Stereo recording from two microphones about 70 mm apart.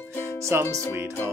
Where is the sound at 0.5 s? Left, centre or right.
Right.